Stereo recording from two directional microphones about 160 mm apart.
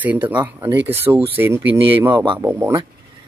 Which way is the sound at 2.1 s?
30° right (ahead or behind).